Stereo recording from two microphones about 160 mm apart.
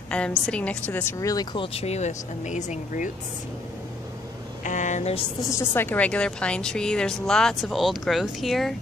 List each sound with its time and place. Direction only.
0.1 s a woman's voice: 5° left (ahead or behind); by 3.1 s 50° left (ahead or behind)
4.6 s speech: 50° left (ahead or behind)
5.4 s a woman's voice: 20° left (ahead or behind); by 8.7 s centre (ahead or behind)